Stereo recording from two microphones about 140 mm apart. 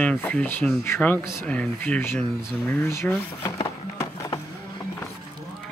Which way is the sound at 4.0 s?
25° left (ahead or behind).